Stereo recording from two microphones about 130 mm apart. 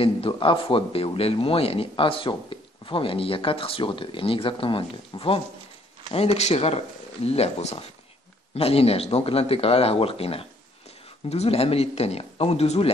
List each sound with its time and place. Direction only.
0.0 s speech: 40° left (ahead or behind)
6.1 s speech: 55° left (ahead or behind)